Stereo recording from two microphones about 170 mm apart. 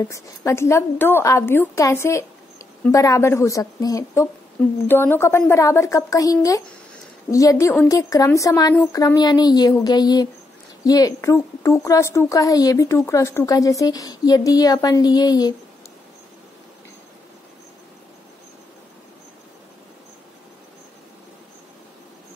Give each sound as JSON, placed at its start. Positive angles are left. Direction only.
{"t": 0.1, "sound": "a woman's voice", "side_deg": 15}